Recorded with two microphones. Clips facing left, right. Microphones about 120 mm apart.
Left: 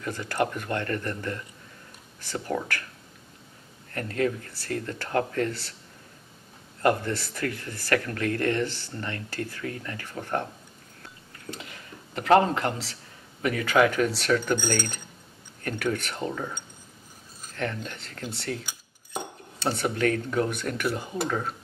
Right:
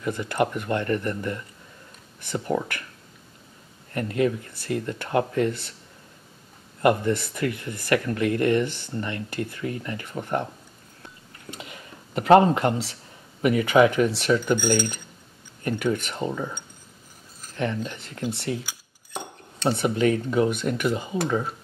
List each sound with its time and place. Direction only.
0.0 s speech: 15° right (ahead or behind)
3.9 s speech: 15° right (ahead or behind)
6.8 s speech: 15° right (ahead or behind)
11.5 s speech: 20° right (ahead or behind)
19.8 s speech: 10° right (ahead or behind)